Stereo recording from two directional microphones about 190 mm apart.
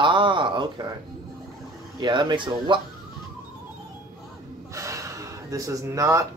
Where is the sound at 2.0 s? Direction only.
25° right (ahead or behind).